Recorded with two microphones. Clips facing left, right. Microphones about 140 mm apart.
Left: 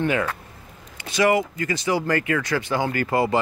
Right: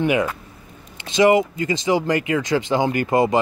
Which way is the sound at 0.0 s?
15° right (ahead or behind).